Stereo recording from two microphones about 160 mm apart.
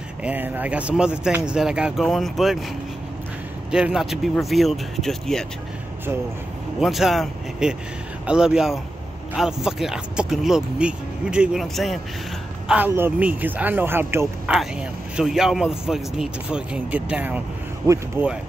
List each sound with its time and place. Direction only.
0.2 s speech: 10° right (ahead or behind)
3.7 s speech: 5° right (ahead or behind)
6.8 s speech: centre (ahead or behind)
12.6 s speech: 10° right (ahead or behind)
17.8 s speech: 20° right (ahead or behind)